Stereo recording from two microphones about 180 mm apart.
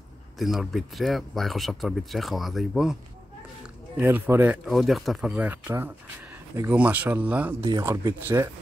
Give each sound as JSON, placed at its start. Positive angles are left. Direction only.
{"t": 0.4, "sound": "speech", "side_deg": 0}